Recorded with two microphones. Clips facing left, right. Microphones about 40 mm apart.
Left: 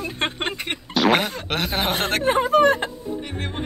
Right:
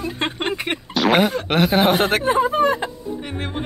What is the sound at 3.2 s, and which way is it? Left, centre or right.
Speech, centre.